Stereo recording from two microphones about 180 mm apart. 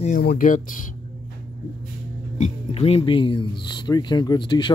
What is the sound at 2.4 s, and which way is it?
Speech, 35° left (ahead or behind).